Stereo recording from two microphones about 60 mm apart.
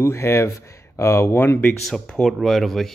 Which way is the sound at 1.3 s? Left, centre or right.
Left.